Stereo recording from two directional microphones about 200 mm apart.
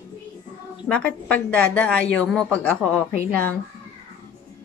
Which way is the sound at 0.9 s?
5° left (ahead or behind).